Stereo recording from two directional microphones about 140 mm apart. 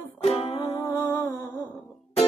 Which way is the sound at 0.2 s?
45° left (ahead or behind).